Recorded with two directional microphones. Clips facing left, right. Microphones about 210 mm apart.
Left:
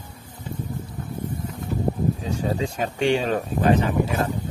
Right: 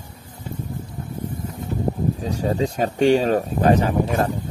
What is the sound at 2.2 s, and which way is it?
Speech, 40° right (ahead or behind).